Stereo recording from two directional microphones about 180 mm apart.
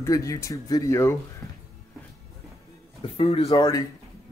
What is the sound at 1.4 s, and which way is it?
Music, centre (ahead or behind).